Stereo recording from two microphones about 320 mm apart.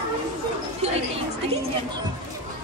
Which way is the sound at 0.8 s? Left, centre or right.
Centre.